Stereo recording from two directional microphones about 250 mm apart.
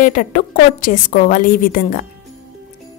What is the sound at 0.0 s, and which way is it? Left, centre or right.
A woman's voice, left.